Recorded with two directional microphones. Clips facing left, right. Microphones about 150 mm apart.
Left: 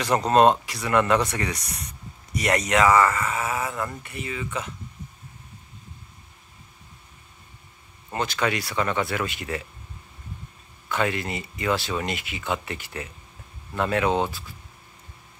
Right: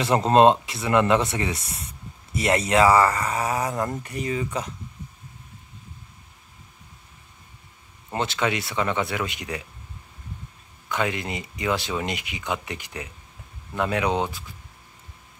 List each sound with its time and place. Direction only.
0.0 s speech: 25° right (ahead or behind)
8.1 s speech: 25° right (ahead or behind)
10.9 s speech: 20° right (ahead or behind)